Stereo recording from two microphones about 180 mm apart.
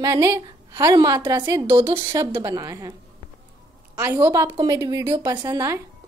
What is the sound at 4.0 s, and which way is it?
Speech, 10° right (ahead or behind).